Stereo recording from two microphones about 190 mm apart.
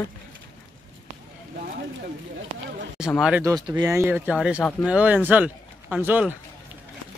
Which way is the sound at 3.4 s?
20° right (ahead or behind).